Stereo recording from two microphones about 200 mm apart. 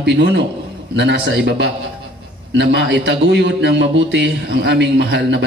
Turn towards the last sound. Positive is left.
turn(degrees=-60)  # may be behind; listen again after turning